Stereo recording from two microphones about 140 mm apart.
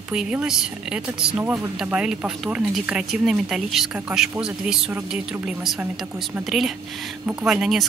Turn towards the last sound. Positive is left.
turn(degrees=0)  # may be behind; listen again after turning